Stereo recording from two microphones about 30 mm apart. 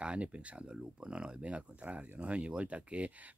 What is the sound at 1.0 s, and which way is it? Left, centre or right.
Speech, right.